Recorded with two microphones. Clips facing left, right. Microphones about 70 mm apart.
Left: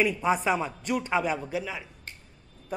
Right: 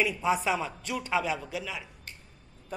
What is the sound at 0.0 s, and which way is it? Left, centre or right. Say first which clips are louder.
Speech: left 2 dB; centre.